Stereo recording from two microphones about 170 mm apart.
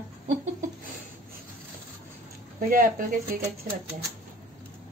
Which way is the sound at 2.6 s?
55° right (ahead or behind).